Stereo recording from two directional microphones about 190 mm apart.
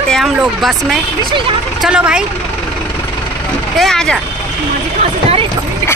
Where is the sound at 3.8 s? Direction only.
5° left (ahead or behind).